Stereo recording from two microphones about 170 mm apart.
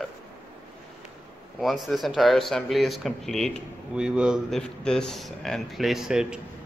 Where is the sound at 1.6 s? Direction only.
Centre (ahead or behind).